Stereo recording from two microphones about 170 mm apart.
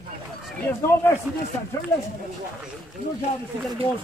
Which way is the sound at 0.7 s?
15° left (ahead or behind).